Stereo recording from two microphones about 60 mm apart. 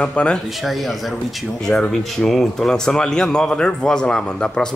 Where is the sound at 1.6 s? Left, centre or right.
Centre.